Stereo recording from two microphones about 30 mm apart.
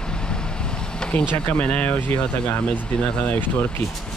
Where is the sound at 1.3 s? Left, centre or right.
Left.